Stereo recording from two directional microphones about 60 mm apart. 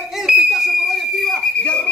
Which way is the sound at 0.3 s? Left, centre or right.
Centre.